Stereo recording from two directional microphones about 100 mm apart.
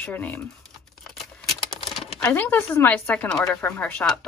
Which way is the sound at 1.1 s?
Centre (ahead or behind).